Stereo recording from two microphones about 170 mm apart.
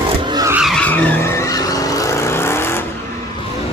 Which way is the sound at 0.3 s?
20° right (ahead or behind).